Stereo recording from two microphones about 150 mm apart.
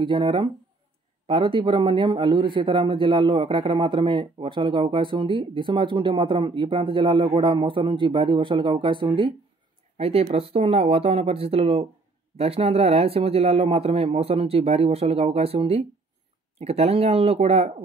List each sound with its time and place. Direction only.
0.0 s a man's voice: 30° right (ahead or behind)